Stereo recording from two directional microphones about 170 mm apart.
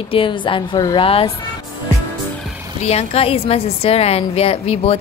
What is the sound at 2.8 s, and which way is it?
A woman's voice, 40° left (ahead or behind).